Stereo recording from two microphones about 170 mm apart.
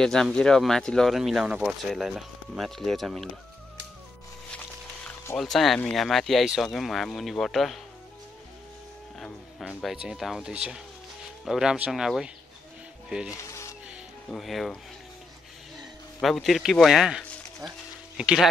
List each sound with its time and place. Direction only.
0.0 s speech: 5° left (ahead or behind)
5.0 s a sound: 10° left (ahead or behind)
5.4 s speech: centre (ahead or behind)
9.2 s speech: 5° left (ahead or behind)
13.3 s zipper: 15° left (ahead or behind)
13.8 s music: centre (ahead or behind)
16.2 s speech: centre (ahead or behind)
17.6 s a sound: 5° right (ahead or behind)